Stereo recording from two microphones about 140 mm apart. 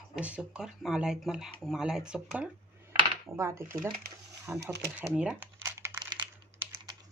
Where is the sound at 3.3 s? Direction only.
20° right (ahead or behind).